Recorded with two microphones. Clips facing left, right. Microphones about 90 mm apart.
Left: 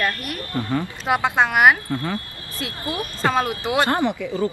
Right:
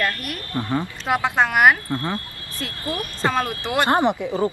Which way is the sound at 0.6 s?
20° right (ahead or behind).